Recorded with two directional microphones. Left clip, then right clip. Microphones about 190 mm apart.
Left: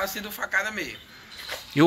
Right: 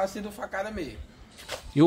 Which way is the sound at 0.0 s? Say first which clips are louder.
Left 1 dB; 45° right (ahead or behind).